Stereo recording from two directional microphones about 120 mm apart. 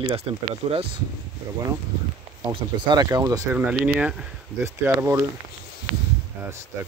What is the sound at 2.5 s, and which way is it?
Speech, 40° right (ahead or behind).